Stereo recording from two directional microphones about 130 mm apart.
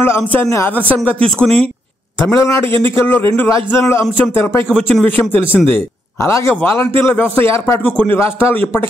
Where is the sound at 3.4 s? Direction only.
25° left (ahead or behind).